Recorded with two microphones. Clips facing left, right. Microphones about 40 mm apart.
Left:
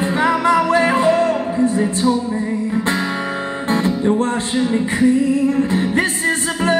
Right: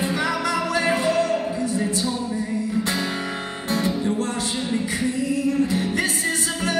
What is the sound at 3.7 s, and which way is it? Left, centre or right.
Music, left.